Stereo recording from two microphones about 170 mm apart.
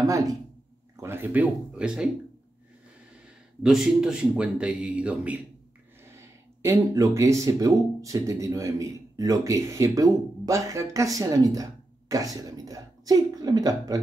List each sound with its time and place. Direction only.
0.0 s speech: 20° right (ahead or behind)
3.6 s speech: 5° right (ahead or behind); by 13.9 s 20° right (ahead or behind)